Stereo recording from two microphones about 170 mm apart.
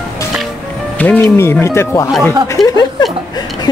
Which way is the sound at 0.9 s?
10° left (ahead or behind).